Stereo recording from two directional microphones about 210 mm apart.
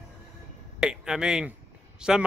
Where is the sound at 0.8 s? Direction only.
5° right (ahead or behind).